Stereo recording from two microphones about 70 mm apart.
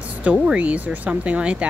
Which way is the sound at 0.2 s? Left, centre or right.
Centre.